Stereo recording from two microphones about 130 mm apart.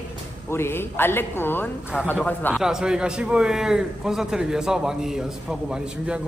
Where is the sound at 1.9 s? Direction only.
Centre (ahead or behind).